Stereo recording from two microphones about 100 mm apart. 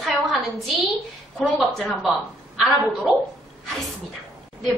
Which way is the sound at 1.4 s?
Centre (ahead or behind).